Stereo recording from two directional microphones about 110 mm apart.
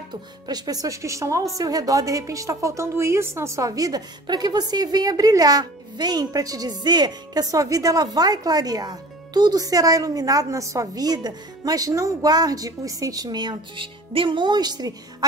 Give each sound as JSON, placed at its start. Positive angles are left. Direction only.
{"t": 0.1, "sound": "a woman's voice", "side_deg": -40}